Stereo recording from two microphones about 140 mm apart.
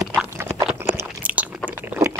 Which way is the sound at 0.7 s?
10° right (ahead or behind).